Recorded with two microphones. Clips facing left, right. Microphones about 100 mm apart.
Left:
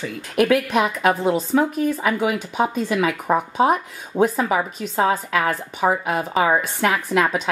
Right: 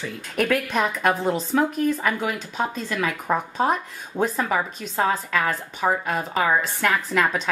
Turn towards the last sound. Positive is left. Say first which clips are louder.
# left 3 dB
turn(degrees=5)  # may be behind; listen again after turning